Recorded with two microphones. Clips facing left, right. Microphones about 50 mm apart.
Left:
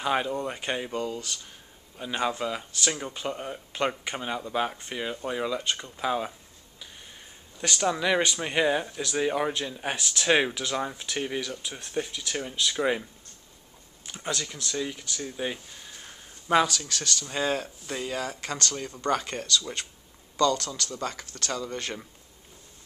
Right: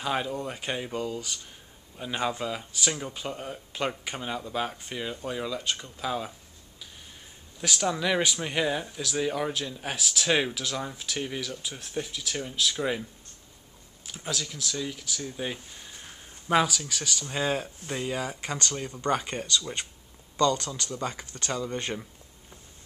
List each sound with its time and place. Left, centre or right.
0.0 s speech: centre
5.6 s speech: centre
5.9 s speech: centre
7.6 s speech: centre
8.4 s speech: centre
14.0 s a sound: centre
14.4 s speech: centre